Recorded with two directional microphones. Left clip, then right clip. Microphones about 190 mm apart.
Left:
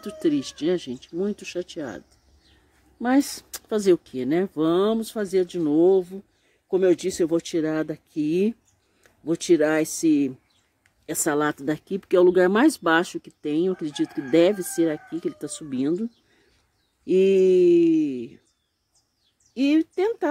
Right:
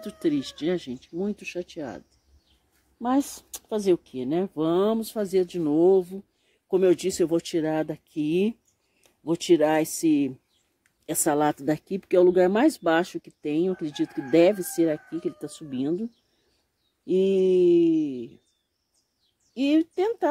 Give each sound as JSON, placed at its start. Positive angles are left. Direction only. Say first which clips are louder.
{"t": 0.0, "sound": "speech", "louder": "left 2 dB", "side_deg": -5}
{"t": 3.0, "sound": "a woman's voice", "louder": "left 3 dB", "side_deg": 15}
{"t": 19.5, "sound": "speech", "louder": "left 2 dB", "side_deg": 0}